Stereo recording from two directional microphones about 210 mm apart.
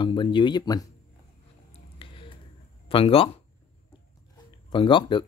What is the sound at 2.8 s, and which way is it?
Speech, 25° left (ahead or behind).